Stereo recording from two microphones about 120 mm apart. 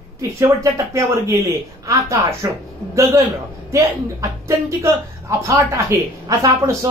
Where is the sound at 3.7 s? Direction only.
25° right (ahead or behind).